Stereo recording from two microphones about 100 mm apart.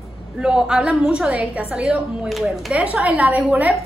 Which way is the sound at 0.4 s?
5° right (ahead or behind).